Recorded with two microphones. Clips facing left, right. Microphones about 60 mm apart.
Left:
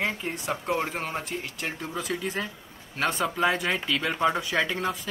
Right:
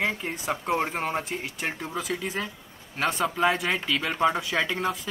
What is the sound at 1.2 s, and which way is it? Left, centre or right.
Speech, centre.